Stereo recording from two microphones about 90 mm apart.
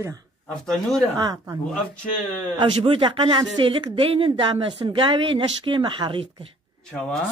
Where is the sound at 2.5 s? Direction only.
60° right (ahead or behind).